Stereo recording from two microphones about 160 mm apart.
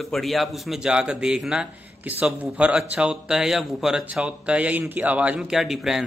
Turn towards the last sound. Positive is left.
turn(degrees=0)  # may be behind; listen again after turning